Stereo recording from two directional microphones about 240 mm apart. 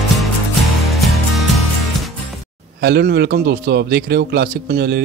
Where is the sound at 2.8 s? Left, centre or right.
Right.